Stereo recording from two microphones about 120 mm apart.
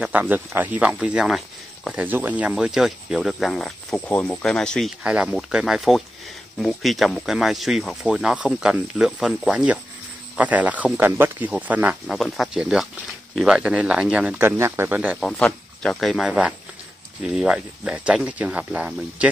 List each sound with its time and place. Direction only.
0.0 s speech: 15° right (ahead or behind); by 3.7 s 5° left (ahead or behind)
3.9 s speech: 15° left (ahead or behind)
5.0 s speech: 10° right (ahead or behind)
12.1 s speech: centre (ahead or behind)
15.1 s speech: 5° left (ahead or behind); by 19.2 s 10° right (ahead or behind)